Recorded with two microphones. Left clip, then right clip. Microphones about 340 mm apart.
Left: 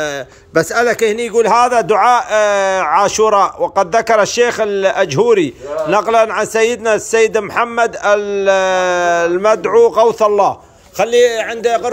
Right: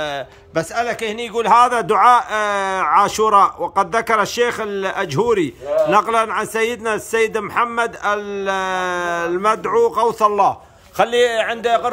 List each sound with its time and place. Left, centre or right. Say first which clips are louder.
0.6 s a man's voice: left 8 dB; centre
11.1 s speech: left 6 dB; right
11.6 s a man's voice: left 4 dB; centre